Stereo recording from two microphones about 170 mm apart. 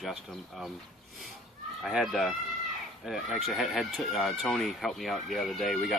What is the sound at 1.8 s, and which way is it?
Speech, centre (ahead or behind).